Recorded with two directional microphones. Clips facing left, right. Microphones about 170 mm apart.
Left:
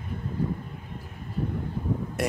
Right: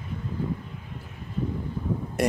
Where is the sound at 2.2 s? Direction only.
Centre (ahead or behind).